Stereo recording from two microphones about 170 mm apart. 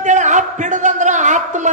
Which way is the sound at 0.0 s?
45° right (ahead or behind).